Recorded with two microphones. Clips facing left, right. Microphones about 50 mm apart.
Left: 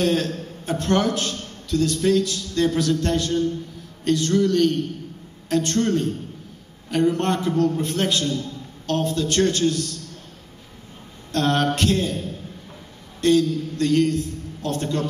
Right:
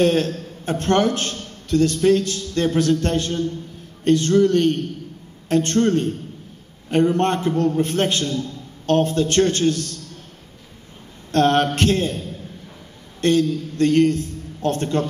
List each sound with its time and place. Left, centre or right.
0.0 s a man's voice: right
11.3 s a man's voice: right
13.2 s a man's voice: right